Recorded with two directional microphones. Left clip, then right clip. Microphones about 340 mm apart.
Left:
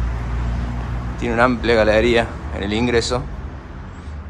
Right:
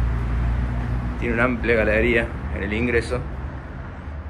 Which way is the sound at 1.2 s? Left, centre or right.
Centre.